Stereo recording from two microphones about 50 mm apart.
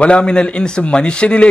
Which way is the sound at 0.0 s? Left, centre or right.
Left.